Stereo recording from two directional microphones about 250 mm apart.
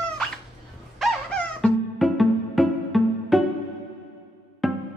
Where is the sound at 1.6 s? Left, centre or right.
Centre.